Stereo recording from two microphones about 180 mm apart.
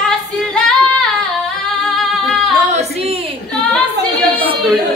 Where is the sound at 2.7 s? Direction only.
35° right (ahead or behind).